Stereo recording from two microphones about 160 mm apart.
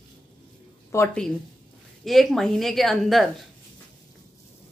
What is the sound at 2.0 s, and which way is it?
Speech, centre (ahead or behind).